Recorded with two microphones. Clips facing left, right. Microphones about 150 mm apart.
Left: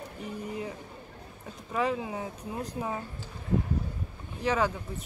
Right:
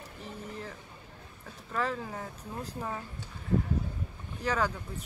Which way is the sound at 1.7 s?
10° left (ahead or behind).